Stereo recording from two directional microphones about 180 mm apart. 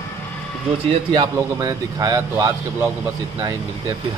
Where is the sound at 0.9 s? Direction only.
25° right (ahead or behind).